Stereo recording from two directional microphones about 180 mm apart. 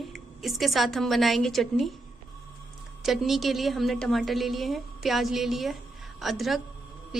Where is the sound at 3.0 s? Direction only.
Centre (ahead or behind).